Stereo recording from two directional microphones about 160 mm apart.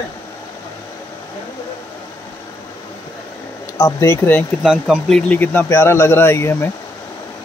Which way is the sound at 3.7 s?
20° left (ahead or behind).